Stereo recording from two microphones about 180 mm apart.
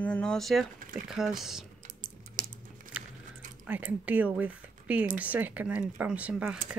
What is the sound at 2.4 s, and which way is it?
Crumpling, 50° right (ahead or behind).